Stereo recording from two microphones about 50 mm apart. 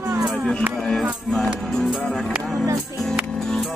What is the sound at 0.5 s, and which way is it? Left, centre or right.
Music, centre.